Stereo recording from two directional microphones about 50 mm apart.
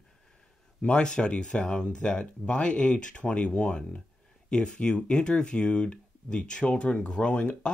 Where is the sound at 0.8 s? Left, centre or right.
Centre.